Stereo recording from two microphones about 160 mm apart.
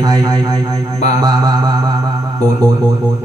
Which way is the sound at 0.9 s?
45° left (ahead or behind).